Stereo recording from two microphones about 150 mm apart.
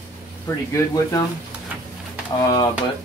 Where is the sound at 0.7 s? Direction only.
25° left (ahead or behind).